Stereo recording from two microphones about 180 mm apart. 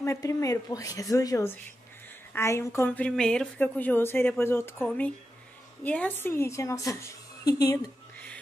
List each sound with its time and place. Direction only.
0.0 s a woman's voice: 15° left (ahead or behind)